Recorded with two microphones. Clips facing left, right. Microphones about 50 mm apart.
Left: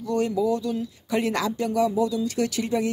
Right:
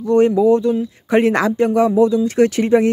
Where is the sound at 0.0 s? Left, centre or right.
Right.